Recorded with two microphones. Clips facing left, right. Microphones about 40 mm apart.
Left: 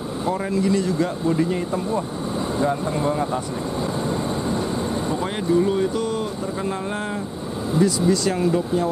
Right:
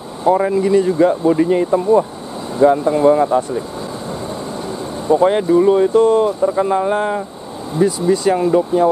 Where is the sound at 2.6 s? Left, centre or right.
Right.